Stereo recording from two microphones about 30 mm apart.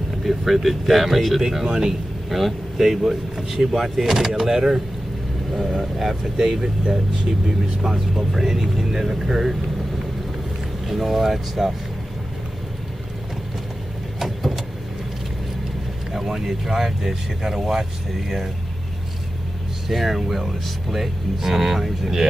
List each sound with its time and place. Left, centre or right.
0.2 s speech: centre
1.5 s speech: centre
2.2 s speech: centre
8.1 s speech: centre
10.9 s speech: centre
14.2 s vehicle: centre
16.1 s speech: centre
19.9 s speech: centre